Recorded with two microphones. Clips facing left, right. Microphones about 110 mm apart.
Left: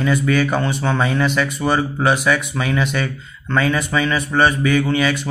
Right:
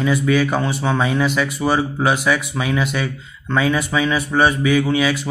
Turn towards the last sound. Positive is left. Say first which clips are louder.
# even
turn(degrees=-5)  # may be behind; listen again after turning